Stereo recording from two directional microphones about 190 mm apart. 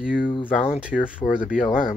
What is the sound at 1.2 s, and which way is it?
Speech, 20° left (ahead or behind).